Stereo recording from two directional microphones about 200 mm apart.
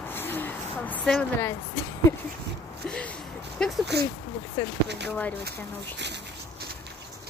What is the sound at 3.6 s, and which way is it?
Speech, 5° left (ahead or behind).